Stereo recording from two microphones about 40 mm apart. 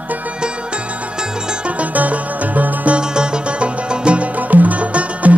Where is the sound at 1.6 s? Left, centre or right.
Right.